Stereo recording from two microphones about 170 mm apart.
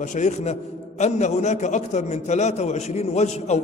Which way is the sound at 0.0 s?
45° left (ahead or behind).